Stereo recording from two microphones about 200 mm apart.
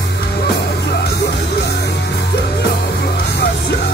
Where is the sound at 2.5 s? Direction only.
50° left (ahead or behind).